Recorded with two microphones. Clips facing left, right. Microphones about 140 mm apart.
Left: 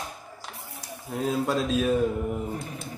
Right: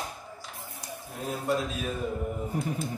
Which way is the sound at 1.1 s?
90° left.